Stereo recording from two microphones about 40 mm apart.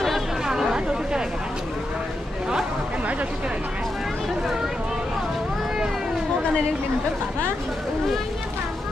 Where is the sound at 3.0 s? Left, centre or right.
Right.